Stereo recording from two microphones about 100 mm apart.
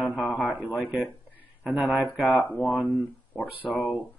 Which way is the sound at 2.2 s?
15° right (ahead or behind).